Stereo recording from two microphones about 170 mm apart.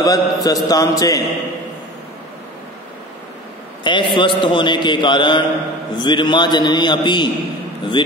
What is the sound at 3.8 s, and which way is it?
A man's voice, 30° left (ahead or behind).